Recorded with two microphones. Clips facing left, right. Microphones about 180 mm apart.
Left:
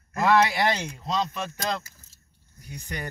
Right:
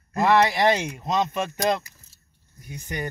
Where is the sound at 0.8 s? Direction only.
20° right (ahead or behind).